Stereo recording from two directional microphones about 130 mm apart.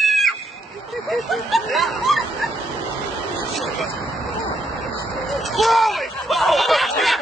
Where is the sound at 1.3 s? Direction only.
Centre (ahead or behind).